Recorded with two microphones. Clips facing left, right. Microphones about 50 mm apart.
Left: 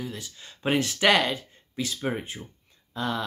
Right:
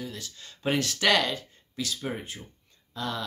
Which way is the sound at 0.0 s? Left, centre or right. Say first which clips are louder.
Left 2 dB; centre.